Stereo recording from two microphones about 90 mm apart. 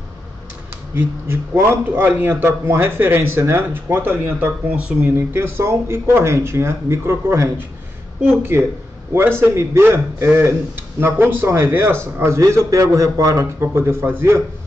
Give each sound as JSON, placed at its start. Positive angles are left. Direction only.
{"t": 0.9, "sound": "a man's voice", "side_deg": -25}
{"t": 5.1, "sound": "a man's voice", "side_deg": -25}
{"t": 13.6, "sound": "a man's voice", "side_deg": -25}